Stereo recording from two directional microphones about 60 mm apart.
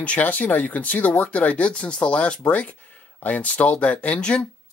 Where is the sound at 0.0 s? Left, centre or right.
Left.